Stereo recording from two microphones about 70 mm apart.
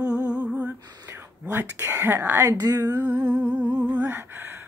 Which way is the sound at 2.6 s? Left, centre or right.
Right.